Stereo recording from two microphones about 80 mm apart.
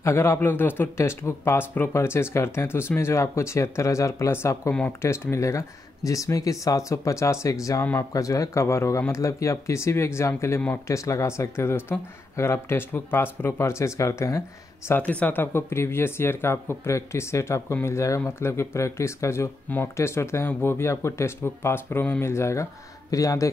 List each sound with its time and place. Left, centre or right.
0.0 s a man's voice: left
14.9 s a man's voice: centre; by 23.5 s left